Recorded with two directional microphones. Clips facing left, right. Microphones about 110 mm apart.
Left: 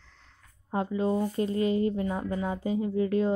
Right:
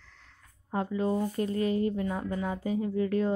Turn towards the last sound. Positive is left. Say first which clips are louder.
# left 2 dB
turn(degrees=20)  # may be behind; listen again after turning